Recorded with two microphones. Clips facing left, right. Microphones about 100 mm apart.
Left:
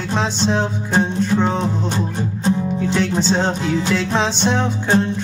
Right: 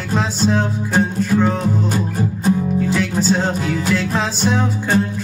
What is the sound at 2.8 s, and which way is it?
Music, 5° right (ahead or behind).